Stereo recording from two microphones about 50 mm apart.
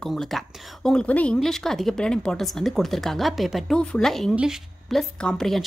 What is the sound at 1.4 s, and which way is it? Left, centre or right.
Speech, centre.